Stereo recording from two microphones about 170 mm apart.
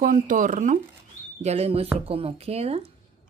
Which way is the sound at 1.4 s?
40° right (ahead or behind).